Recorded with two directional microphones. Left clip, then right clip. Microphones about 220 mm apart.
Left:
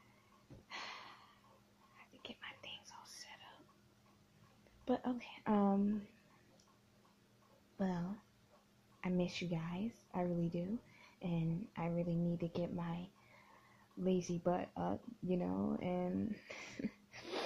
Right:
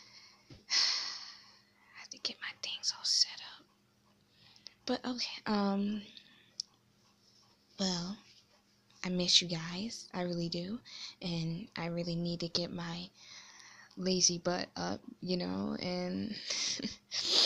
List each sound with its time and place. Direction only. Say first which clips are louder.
0.7 s a sound: right 17 dB; 15° right (ahead or behind)
2.0 s whispering: right 12 dB; 10° right (ahead or behind)
4.8 s speech: right 3 dB; 10° right (ahead or behind)
7.7 s speech: right 6 dB; 15° right (ahead or behind)